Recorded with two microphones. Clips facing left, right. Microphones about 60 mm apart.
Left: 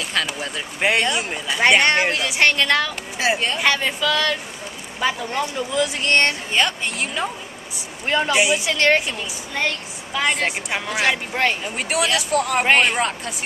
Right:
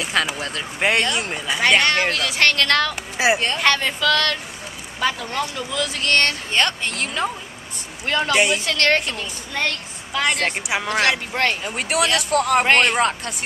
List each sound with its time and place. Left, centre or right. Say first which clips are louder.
0.0 s a woman's voice: right 2 dB; centre
1.7 s a woman's voice: left 1 dB; left
6.5 s a woman's voice: even; centre